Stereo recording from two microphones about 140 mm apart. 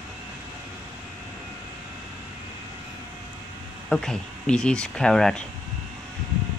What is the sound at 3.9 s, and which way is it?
Speech, 5° left (ahead or behind).